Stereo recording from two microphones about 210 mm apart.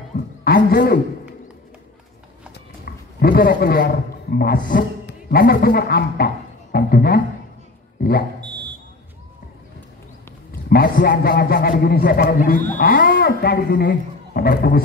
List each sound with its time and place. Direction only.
0.4 s a man's voice: 45° left (ahead or behind)
2.5 s a man's voice: 45° left (ahead or behind)
10.7 s a man's voice: 40° left (ahead or behind)